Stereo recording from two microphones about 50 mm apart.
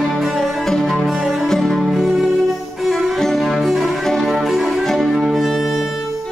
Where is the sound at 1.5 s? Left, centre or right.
Centre.